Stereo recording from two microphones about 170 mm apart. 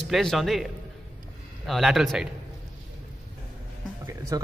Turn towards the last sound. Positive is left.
turn(degrees=-20)  # may be behind; listen again after turning